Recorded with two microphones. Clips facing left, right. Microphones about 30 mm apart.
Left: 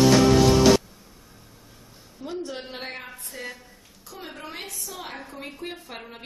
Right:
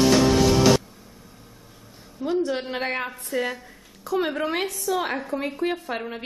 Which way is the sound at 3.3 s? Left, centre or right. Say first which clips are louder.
Right 12 dB; right.